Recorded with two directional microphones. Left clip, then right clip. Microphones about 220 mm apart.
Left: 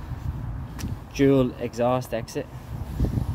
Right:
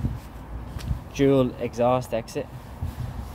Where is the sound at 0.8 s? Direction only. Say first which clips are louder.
Left 1 dB; centre (ahead or behind).